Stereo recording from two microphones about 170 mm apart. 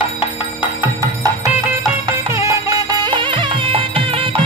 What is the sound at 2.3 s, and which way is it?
Music, 15° right (ahead or behind).